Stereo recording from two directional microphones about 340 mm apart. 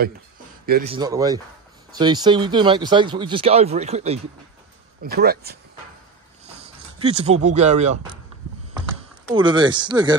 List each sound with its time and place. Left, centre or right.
0.7 s speech: right
0.9 s speech: centre; by 5.6 s right
7.0 s speech: centre
9.3 s speech: centre